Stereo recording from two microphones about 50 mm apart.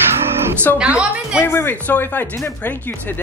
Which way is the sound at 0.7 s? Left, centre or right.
Right.